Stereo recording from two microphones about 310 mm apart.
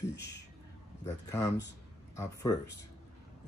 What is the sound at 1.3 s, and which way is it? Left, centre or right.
Speech, centre.